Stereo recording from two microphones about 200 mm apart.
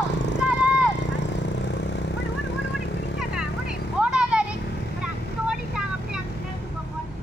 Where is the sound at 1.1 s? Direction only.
60° left (ahead or behind).